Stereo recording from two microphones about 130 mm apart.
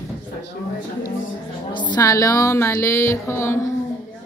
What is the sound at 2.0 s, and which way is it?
Music, 25° left (ahead or behind).